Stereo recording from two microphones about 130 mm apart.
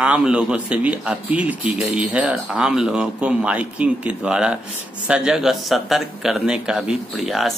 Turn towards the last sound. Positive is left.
turn(degrees=0)  # may be behind; listen again after turning